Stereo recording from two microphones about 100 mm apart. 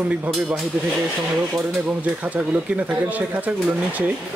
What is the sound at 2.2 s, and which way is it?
Speech, 15° right (ahead or behind).